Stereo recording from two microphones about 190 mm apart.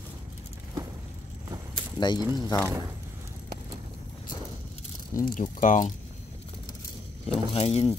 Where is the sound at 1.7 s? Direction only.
20° left (ahead or behind).